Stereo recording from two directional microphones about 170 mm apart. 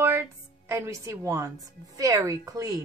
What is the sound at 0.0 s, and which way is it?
Music, 15° right (ahead or behind).